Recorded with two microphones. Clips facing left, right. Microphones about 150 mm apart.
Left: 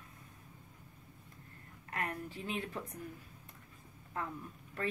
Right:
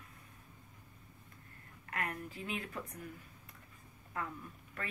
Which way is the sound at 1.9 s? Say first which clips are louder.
Left 1 dB; 30° left (ahead or behind).